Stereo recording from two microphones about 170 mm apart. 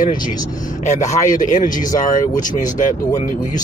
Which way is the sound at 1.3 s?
50° left (ahead or behind).